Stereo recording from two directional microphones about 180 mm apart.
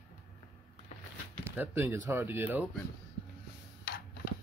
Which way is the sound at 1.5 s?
10° right (ahead or behind).